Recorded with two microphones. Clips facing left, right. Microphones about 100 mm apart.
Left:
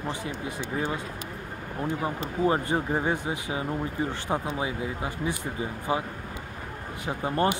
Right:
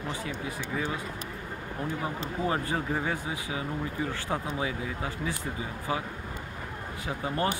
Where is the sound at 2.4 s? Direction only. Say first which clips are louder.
Left 5 dB; 25° left (ahead or behind).